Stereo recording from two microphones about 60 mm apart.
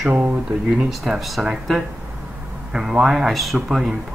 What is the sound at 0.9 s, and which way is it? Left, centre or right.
Speech, centre.